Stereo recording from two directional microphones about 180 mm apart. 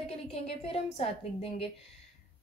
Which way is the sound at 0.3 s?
35° left (ahead or behind).